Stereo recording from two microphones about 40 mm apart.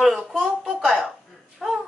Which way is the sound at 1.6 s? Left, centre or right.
Centre.